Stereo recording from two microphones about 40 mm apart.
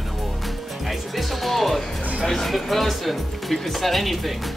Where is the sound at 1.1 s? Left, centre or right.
Centre.